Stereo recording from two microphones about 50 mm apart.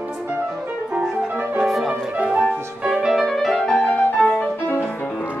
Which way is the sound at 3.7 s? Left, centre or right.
Left.